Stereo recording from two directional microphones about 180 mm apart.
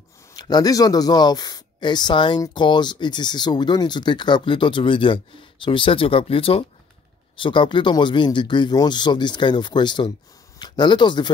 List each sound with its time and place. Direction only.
0.4 s speech: 20° left (ahead or behind)